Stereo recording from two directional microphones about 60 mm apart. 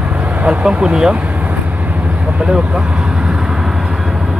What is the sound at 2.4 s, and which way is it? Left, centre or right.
Speech, centre.